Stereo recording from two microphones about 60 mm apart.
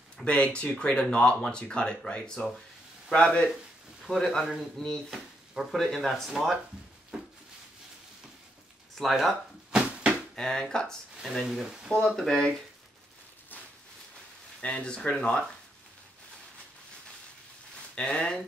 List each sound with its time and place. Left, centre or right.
0.2 s speech: centre
4.0 s speech: centre
5.1 s speech: centre
7.1 s a sound: centre
9.7 s a sound: centre
10.3 s speech: centre
11.4 s speech: centre
12.2 s speech: centre
14.6 s speech: centre
17.9 s speech: centre